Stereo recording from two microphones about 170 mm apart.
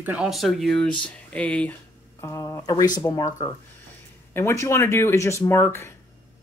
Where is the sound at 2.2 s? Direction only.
20° left (ahead or behind).